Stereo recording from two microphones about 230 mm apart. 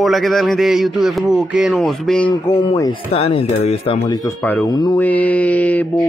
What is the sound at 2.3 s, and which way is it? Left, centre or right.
Speech, centre.